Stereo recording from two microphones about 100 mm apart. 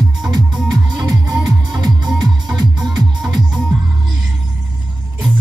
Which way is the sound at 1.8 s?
45° right (ahead or behind).